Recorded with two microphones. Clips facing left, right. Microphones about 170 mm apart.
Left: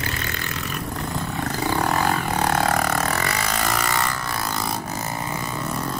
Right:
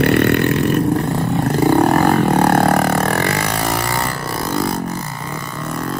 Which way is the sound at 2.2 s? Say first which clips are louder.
Right 9 dB; 60° right (ahead or behind).